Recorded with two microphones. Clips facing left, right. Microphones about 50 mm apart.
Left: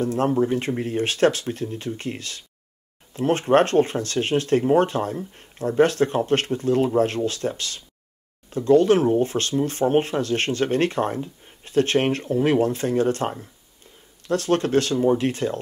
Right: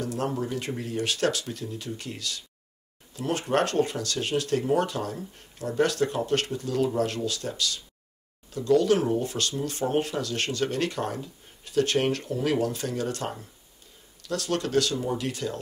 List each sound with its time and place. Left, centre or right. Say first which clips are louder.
0.0 s speech: left 8 dB; left